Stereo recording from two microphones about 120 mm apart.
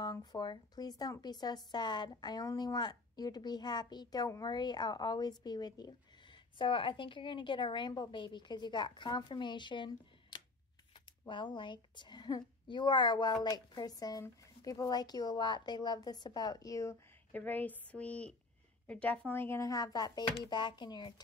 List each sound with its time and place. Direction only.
0.0 s a woman's voice: 35° left (ahead or behind)
17.3 s a woman's voice: 15° left (ahead or behind)
19.6 s a woman's voice: 30° left (ahead or behind)